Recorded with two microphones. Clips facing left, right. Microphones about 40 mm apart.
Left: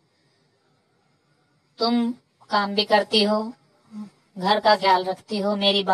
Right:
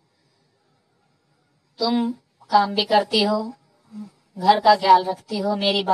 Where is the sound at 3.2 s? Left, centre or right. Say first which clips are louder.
Even; centre.